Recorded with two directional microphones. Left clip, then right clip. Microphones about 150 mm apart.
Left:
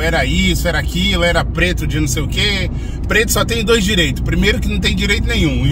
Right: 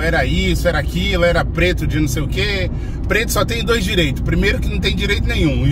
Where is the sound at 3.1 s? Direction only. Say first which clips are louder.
Left 3 dB; 10° left (ahead or behind).